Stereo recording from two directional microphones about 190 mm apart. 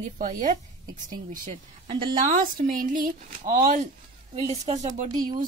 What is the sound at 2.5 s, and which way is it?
Speech, 45° right (ahead or behind).